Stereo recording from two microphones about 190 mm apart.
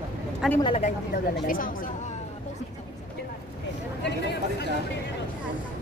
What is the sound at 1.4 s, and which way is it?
Speech, 45° left (ahead or behind).